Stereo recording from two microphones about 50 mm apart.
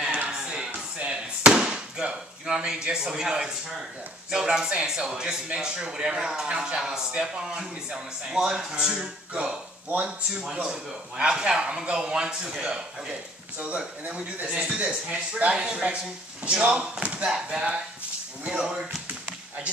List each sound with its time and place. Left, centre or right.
0.3 s a sound: centre
0.9 s chop: right
2.4 s speech: centre
13.7 s speech: right